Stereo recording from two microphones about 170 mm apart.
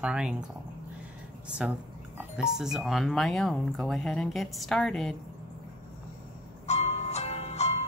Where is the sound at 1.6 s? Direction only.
5° right (ahead or behind).